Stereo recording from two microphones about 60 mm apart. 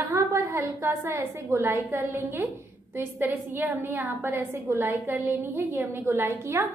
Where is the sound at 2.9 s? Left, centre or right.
Right.